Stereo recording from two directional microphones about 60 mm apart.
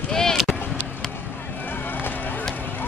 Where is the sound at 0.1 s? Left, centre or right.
Centre.